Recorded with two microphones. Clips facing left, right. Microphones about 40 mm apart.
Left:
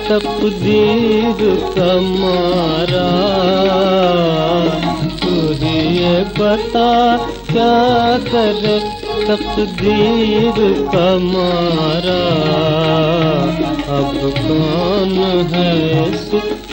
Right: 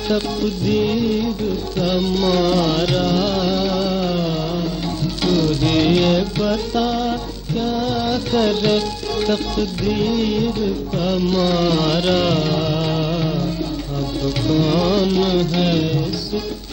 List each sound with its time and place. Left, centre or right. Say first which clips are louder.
0.1 s music: left 6 dB; left
1.9 s music: left 4 dB; left
2.2 s music: left 3 dB; left
5.2 s music: left 1 dB; left
6.1 s music: left 6 dB; left
8.3 s music: left 3 dB; left
9.3 s music: left 5 dB; left
11.1 s music: left 4 dB; left
12.4 s music: left 6 dB; left
14.2 s music: left 3 dB; left